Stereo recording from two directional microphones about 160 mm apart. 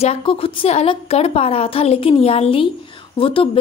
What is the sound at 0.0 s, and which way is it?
Speech, 35° left (ahead or behind).